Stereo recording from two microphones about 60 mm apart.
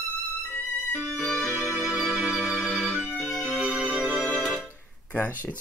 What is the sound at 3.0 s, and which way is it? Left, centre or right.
Music, centre.